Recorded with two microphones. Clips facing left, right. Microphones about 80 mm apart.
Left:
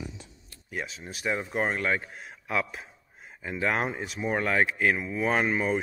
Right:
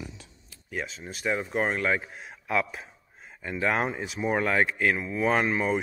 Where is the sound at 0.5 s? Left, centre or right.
Centre.